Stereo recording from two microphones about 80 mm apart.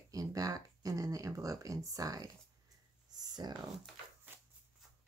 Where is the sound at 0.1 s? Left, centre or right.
Right.